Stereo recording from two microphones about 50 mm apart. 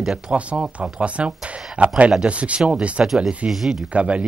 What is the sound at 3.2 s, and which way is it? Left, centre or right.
Speech, centre.